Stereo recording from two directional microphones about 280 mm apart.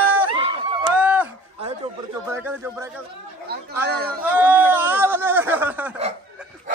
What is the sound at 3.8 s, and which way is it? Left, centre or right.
Speech, right.